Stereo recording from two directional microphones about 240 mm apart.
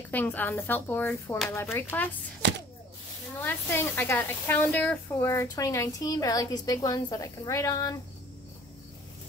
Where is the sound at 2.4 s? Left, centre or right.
Right.